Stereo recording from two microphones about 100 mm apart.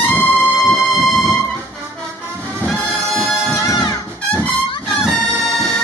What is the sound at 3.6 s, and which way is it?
Music, 40° left (ahead or behind).